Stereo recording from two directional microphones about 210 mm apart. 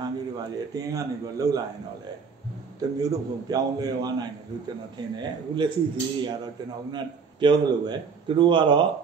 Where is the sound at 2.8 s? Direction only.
20° right (ahead or behind).